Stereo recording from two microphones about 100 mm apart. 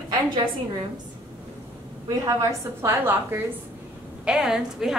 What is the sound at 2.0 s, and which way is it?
A woman's voice, 35° right (ahead or behind).